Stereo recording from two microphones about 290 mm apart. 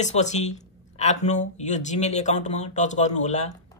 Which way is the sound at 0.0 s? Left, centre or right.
Left.